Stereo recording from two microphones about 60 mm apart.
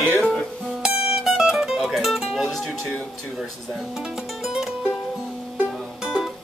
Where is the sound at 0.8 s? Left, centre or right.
Centre.